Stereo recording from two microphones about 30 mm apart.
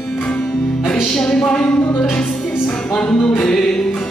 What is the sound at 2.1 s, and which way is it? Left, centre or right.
Music, left.